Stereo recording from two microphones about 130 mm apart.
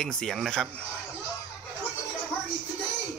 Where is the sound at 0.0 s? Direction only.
5° left (ahead or behind).